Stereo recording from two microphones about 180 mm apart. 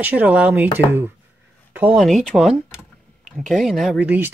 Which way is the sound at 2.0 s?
Centre (ahead or behind).